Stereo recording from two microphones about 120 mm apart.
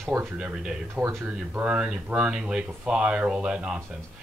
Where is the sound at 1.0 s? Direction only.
20° right (ahead or behind).